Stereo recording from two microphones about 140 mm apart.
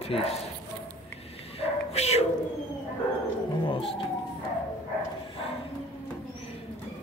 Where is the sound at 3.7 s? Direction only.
40° left (ahead or behind).